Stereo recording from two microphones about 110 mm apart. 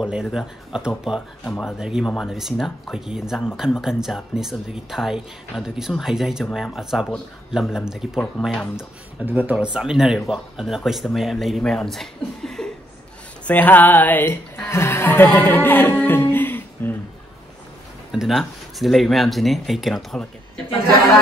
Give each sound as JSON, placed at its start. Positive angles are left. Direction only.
{"t": 0.0, "sound": "speech", "side_deg": -5}
{"t": 9.2, "sound": "speech", "side_deg": -15}
{"t": 13.5, "sound": "a sound", "side_deg": 15}
{"t": 14.7, "sound": "speech", "side_deg": 20}
{"t": 18.1, "sound": "a sound", "side_deg": -5}
{"t": 18.4, "sound": "speech", "side_deg": 0}